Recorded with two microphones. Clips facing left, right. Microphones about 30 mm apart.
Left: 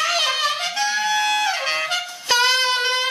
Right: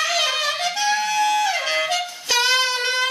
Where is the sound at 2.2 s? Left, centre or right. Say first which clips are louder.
Left 2 dB; centre.